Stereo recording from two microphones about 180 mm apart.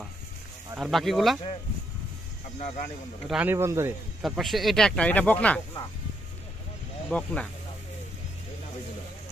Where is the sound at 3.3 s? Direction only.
10° right (ahead or behind).